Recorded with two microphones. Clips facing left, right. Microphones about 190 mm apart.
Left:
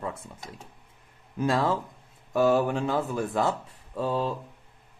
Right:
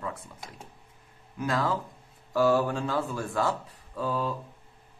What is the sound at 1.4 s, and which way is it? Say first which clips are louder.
Speech: left 3 dB; 25° left (ahead or behind).